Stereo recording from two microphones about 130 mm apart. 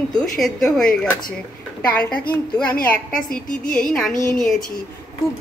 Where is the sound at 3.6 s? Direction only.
90° left.